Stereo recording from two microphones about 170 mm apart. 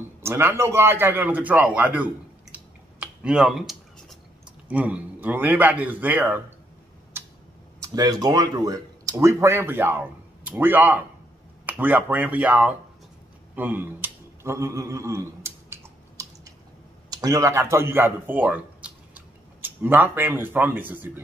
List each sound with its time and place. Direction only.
0.2 s a man's voice: 15° right (ahead or behind)
2.5 s a sound: 5° right (ahead or behind)
4.6 s a man's voice: 10° right (ahead or behind)
7.8 s a man's voice: 20° right (ahead or behind)
13.6 s a sound: 10° right (ahead or behind)
17.1 s speech: 20° right (ahead or behind)